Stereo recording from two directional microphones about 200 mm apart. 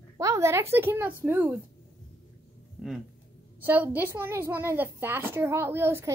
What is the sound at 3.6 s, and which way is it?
A woman's voice, 10° right (ahead or behind).